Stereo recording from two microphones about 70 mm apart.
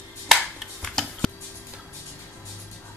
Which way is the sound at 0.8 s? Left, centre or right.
Centre.